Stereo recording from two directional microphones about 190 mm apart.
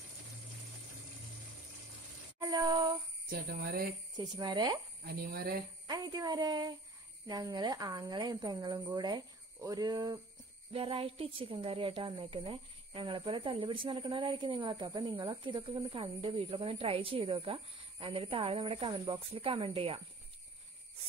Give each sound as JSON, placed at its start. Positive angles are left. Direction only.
{"t": 2.4, "sound": "child singing", "side_deg": -20}
{"t": 3.3, "sound": "speech", "side_deg": -50}
{"t": 4.2, "sound": "speech", "side_deg": -20}
{"t": 5.0, "sound": "speech", "side_deg": -55}
{"t": 5.9, "sound": "speech", "side_deg": -20}